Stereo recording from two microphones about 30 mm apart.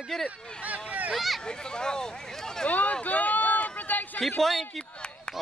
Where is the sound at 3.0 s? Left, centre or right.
Left.